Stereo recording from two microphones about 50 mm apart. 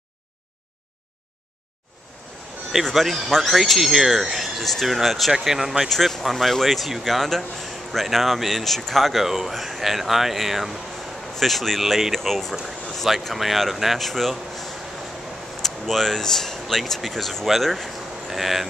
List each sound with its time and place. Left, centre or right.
2.8 s speech: centre
5.9 s speech: centre